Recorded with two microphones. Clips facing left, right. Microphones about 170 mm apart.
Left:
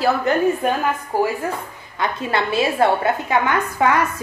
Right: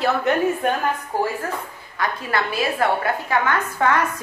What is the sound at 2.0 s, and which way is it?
A woman's voice, 25° left (ahead or behind).